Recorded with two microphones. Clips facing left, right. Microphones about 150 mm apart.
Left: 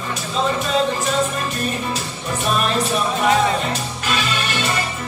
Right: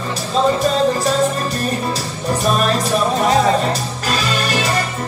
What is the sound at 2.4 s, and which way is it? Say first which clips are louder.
Music: right 2 dB; 40° right (ahead or behind).